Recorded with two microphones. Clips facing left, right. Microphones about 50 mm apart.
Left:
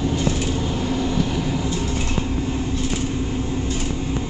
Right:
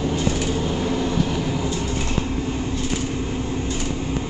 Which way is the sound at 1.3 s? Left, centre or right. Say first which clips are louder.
Even; centre.